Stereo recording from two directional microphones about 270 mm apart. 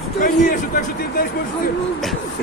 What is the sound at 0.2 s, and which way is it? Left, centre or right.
Speech, left.